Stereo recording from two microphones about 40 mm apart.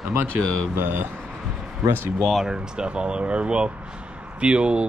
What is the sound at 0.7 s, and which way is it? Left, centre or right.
Speech, right.